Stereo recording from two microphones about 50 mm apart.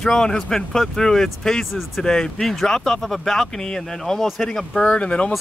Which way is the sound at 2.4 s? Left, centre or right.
Centre.